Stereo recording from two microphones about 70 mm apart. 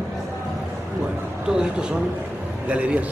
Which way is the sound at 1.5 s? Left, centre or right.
Centre.